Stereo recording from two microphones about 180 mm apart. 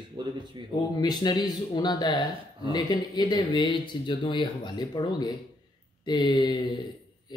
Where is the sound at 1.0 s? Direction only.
20° left (ahead or behind).